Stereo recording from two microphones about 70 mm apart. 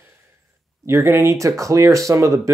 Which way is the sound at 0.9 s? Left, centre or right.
Right.